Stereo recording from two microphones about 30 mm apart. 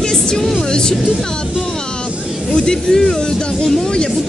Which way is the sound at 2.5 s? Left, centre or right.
Left.